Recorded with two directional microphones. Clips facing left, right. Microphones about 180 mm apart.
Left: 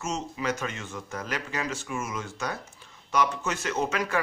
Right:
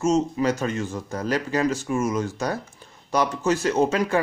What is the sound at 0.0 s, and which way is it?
Speech, 35° right (ahead or behind).